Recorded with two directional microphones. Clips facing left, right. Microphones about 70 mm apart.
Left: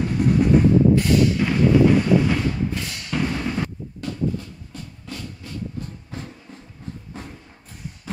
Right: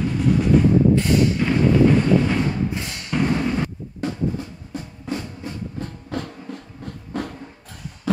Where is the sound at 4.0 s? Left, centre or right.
Right.